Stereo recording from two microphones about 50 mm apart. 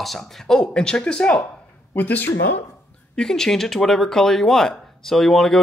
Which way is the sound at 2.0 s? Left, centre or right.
Left.